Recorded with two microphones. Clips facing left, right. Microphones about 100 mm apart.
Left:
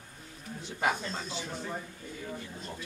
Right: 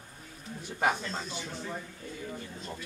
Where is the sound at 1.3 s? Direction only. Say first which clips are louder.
Left 1 dB; 15° left (ahead or behind).